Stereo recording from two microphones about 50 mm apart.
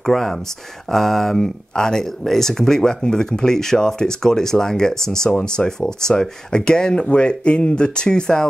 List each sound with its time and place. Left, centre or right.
0.0 s speech: centre